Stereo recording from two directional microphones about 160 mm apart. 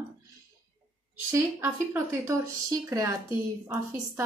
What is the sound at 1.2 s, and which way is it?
A woman's voice, 15° right (ahead or behind).